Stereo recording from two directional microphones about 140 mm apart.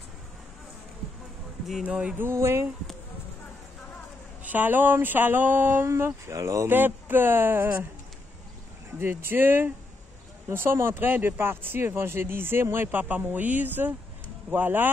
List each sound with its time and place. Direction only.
1.7 s speech: 5° right (ahead or behind)
4.5 s speech: 15° right (ahead or behind)
9.0 s speech: 15° right (ahead or behind)